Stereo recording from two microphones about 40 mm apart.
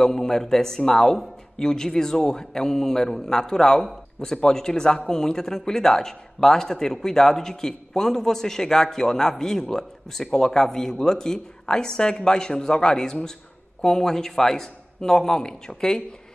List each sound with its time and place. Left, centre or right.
0.0 s speech: centre